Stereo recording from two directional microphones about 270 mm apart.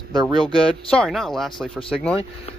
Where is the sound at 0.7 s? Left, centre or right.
Centre.